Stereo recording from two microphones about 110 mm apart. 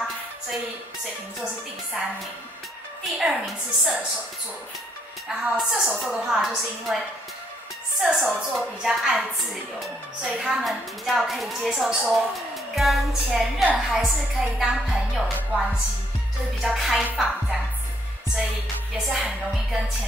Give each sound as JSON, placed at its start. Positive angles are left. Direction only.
{"t": 2.0, "sound": "a woman's voice", "side_deg": -5}
{"t": 5.4, "sound": "a woman's voice", "side_deg": 0}
{"t": 8.0, "sound": "a woman's voice", "side_deg": 0}
{"t": 19.0, "sound": "a woman's voice", "side_deg": -5}